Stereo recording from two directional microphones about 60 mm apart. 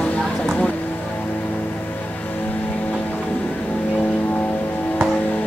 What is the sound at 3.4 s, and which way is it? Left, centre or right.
Music, left.